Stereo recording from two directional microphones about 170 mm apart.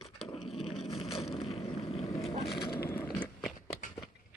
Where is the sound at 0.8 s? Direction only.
35° left (ahead or behind).